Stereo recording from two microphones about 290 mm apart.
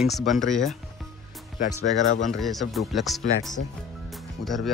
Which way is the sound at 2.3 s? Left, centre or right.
Centre.